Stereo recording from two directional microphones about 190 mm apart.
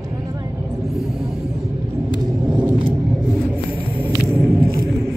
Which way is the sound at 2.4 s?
5° right (ahead or behind).